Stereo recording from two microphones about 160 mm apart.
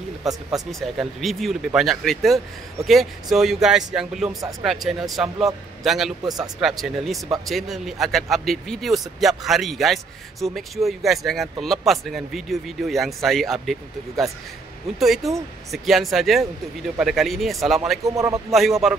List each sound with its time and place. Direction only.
0.5 s speech: centre (ahead or behind)
4.3 s a man's voice: 25° right (ahead or behind)
5.1 s speech: centre (ahead or behind)
6.2 s a man's voice: 25° right (ahead or behind)
6.6 s speech: centre (ahead or behind)
18.0 s a man's voice: 20° right (ahead or behind)
18.5 s speech: centre (ahead or behind)